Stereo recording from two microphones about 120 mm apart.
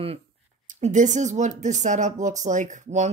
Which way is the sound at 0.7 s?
80° right.